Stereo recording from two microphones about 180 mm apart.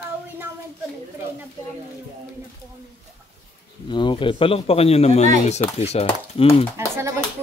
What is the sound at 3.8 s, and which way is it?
A man's voice, 25° left (ahead or behind).